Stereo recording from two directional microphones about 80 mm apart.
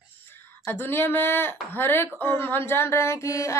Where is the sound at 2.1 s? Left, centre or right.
Left.